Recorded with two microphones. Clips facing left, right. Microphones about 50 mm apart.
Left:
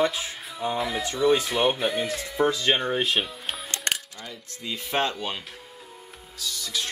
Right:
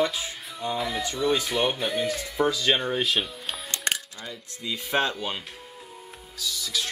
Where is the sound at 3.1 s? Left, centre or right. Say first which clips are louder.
Left 1 dB; centre.